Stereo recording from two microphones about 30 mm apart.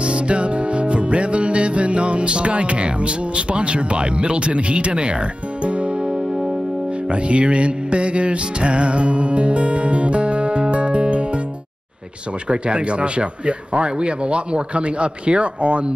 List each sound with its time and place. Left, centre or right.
0.0 s music: right
12.4 s speech: right